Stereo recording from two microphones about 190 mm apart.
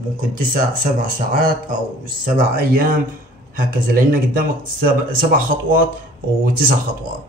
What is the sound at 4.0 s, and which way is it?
Speech, 50° right (ahead or behind).